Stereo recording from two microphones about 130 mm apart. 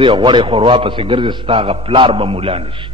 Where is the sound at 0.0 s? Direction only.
40° right (ahead or behind).